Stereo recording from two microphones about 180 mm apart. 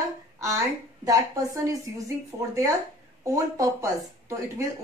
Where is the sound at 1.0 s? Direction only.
15° right (ahead or behind).